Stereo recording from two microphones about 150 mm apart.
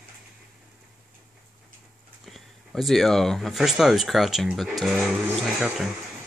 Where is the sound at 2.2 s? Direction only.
Centre (ahead or behind).